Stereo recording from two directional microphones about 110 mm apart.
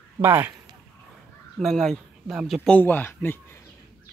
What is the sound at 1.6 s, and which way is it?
Speech, centre (ahead or behind).